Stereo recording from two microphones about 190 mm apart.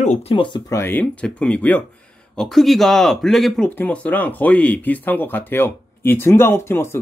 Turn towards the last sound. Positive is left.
turn(degrees=15)  # may be behind; listen again after turning